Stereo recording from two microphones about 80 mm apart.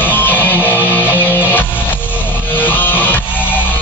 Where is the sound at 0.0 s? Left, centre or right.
Left.